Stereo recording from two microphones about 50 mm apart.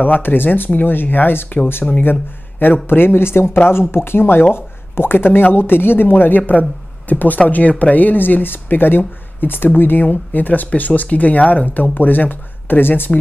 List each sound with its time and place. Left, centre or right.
0.0 s speech: left
1.8 s speech: centre
2.6 s speech: left